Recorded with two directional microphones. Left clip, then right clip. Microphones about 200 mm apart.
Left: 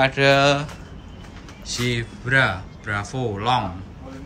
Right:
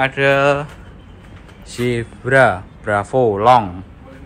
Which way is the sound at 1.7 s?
Centre (ahead or behind).